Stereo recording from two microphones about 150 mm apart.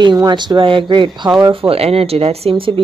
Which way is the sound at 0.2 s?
30° right (ahead or behind).